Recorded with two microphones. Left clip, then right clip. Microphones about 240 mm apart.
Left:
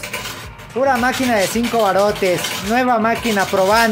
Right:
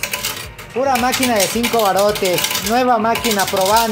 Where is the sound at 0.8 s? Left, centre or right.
Centre.